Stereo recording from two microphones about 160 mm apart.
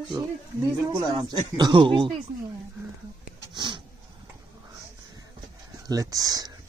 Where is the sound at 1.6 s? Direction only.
30° right (ahead or behind).